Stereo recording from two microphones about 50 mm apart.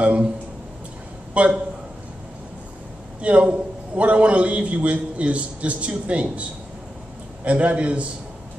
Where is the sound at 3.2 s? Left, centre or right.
Right.